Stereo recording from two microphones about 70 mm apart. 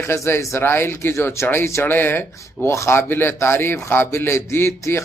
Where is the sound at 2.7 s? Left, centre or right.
Left.